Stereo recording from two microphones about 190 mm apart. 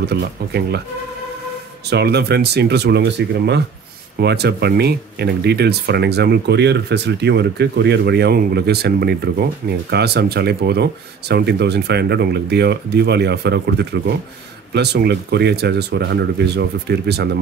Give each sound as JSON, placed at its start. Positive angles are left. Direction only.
{"t": 0.0, "sound": "speech", "side_deg": -60}
{"t": 1.9, "sound": "speech", "side_deg": -60}